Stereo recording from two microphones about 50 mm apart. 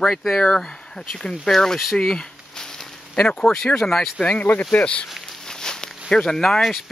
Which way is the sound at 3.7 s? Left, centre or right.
Centre.